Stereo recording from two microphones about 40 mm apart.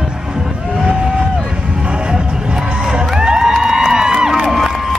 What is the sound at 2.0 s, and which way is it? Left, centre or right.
Music, centre.